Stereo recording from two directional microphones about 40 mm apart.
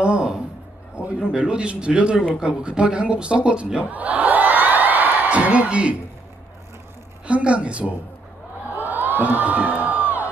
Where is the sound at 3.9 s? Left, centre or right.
Right.